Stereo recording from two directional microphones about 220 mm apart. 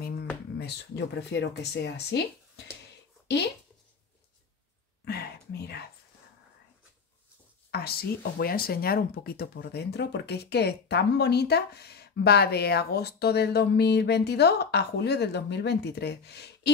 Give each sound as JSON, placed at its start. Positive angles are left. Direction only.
{"t": 0.6, "sound": "speech", "side_deg": 50}
{"t": 5.0, "sound": "whispering", "side_deg": 45}
{"t": 7.7, "sound": "speech", "side_deg": 45}